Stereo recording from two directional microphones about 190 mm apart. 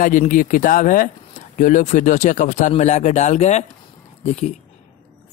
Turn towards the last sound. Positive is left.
turn(degrees=35)  # may be behind; listen again after turning